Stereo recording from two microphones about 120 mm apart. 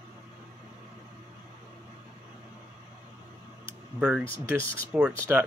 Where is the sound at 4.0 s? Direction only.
5° right (ahead or behind).